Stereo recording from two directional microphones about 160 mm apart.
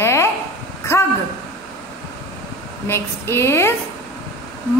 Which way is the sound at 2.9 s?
15° left (ahead or behind).